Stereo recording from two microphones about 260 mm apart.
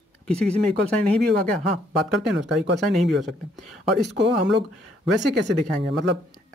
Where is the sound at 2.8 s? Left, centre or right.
Centre.